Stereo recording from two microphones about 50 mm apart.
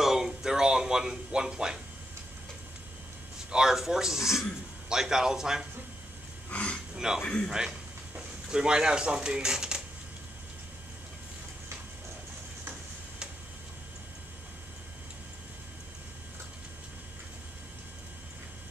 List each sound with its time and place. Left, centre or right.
0.0 s a sound: centre
3.5 s a man's voice: centre
6.5 s speech: left
7.0 s a man's voice: centre
8.5 s a man's voice: centre